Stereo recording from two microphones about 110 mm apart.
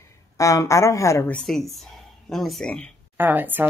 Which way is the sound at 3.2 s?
20° right (ahead or behind).